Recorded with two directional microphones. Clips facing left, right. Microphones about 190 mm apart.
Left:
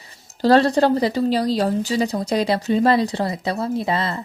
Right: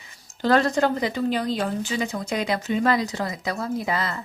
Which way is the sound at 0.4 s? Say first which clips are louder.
Left 5 dB; 35° left (ahead or behind).